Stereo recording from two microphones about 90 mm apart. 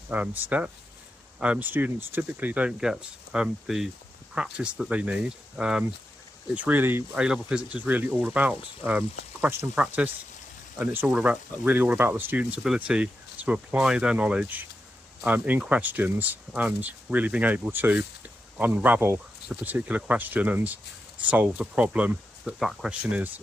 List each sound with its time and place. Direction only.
0.1 s speech: 20° right (ahead or behind)
7.2 s speech: 10° right (ahead or behind)
22.4 s speech: 5° right (ahead or behind)
23.0 s speech: 15° right (ahead or behind)